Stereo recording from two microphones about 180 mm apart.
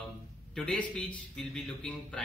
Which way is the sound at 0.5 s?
5° left (ahead or behind).